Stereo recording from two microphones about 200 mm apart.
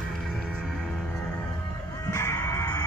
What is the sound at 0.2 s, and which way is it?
Music, centre (ahead or behind).